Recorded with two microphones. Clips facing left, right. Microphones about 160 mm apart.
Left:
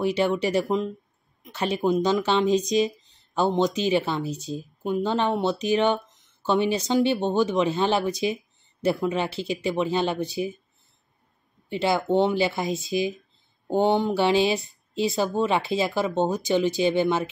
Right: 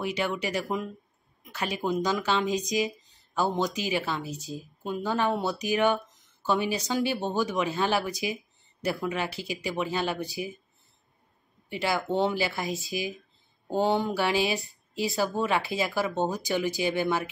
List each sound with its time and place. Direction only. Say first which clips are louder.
0.0 s speech: left 7 dB; 30° left (ahead or behind)
11.7 s speech: left 5 dB; 25° left (ahead or behind)